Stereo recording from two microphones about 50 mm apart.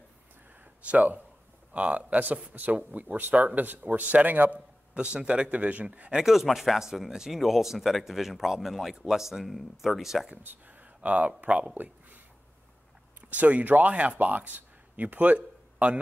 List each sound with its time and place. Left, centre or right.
0.8 s a man's voice: right
4.9 s a man's voice: right
6.1 s speech: centre
10.3 s speech: right
11.7 s a sound: right
13.2 s speech: right